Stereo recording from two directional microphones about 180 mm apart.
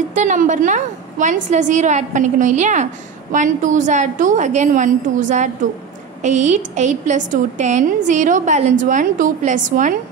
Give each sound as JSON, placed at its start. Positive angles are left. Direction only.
{"t": 0.1, "sound": "a woman's voice", "side_deg": -45}